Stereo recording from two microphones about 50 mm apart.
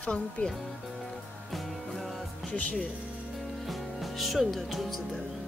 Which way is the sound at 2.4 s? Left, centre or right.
Left.